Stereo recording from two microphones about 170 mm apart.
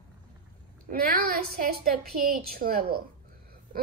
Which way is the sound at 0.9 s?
55° right (ahead or behind).